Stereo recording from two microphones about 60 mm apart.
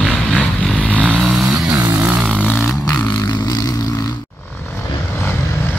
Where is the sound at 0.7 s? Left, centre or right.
Centre.